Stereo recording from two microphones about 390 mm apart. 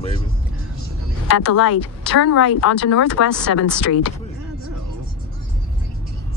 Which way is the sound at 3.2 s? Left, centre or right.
Left.